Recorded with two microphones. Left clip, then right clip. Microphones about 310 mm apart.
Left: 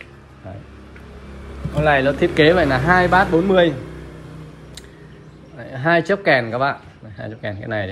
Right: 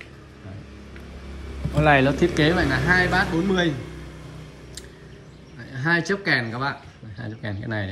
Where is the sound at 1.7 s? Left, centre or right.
Right.